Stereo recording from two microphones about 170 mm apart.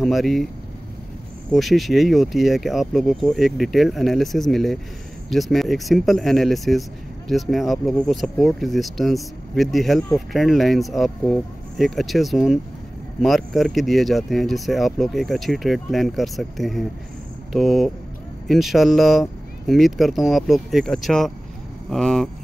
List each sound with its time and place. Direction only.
0.0 s speech: centre (ahead or behind)
1.5 s speech: centre (ahead or behind)